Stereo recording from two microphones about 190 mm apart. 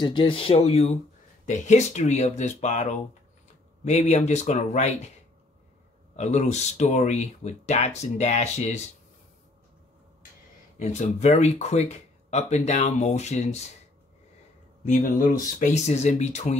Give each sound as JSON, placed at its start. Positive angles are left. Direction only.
{"t": 0.0, "sound": "speech", "side_deg": 25}
{"t": 6.1, "sound": "speech", "side_deg": 40}
{"t": 10.8, "sound": "speech", "side_deg": 35}
{"t": 14.9, "sound": "speech", "side_deg": 45}